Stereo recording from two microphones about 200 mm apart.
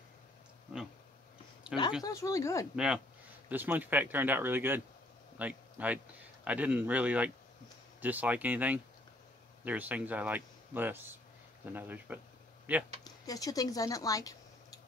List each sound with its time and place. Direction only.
1.6 s a sound: 5° right (ahead or behind)
2.0 s speech: 15° left (ahead or behind)
2.7 s a man's voice: 5° right (ahead or behind)
13.0 s speech: 20° left (ahead or behind)